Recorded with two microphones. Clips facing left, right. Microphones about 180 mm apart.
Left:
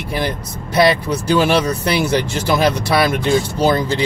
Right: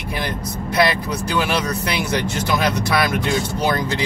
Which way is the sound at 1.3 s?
30° left (ahead or behind).